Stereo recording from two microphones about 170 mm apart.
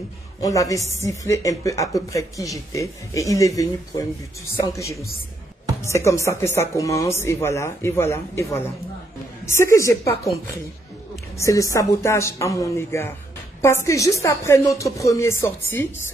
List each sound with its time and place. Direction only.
0.4 s speech: 20° left (ahead or behind)
4.7 s speech: 20° left (ahead or behind)
11.3 s speech: 20° left (ahead or behind)